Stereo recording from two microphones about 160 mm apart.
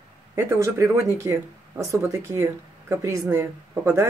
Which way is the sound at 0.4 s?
15° right (ahead or behind).